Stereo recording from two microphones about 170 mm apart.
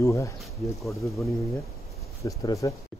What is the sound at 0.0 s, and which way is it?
Speech, 15° left (ahead or behind).